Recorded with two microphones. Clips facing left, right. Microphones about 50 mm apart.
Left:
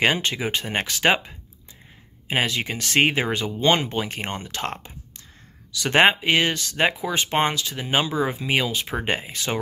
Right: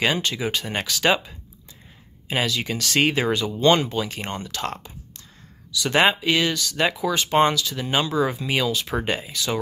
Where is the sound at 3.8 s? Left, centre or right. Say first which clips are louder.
Even; left.